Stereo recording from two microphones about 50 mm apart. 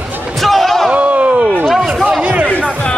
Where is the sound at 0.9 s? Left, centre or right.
Right.